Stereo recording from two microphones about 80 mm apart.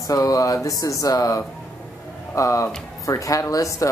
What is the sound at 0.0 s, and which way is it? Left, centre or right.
Speech, left.